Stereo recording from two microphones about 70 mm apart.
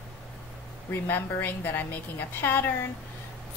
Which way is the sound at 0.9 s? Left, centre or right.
Left.